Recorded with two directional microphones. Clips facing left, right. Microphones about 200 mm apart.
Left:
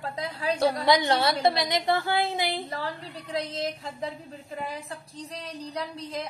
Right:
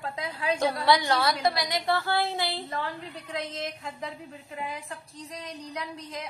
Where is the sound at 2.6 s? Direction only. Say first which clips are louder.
Even; 35° left (ahead or behind).